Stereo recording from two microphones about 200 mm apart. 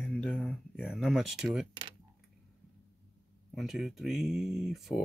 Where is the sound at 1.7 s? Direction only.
25° right (ahead or behind).